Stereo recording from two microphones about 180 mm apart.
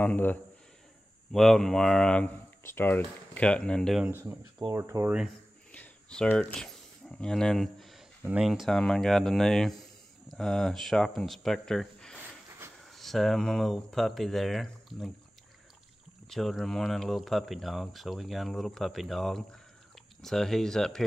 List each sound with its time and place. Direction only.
0.0 s a man's voice: 10° left (ahead or behind)
4.3 s speech: 15° right (ahead or behind)
5.7 s a sound: 5° left (ahead or behind)
8.2 s speech: 5° right (ahead or behind)
12.2 s a sound: 15° right (ahead or behind)
12.8 s speech: centre (ahead or behind)
16.3 s speech: centre (ahead or behind)